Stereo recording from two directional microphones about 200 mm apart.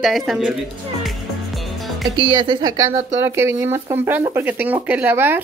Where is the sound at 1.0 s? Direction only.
Centre (ahead or behind).